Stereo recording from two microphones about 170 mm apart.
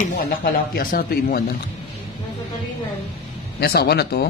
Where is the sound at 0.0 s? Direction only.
60° left (ahead or behind).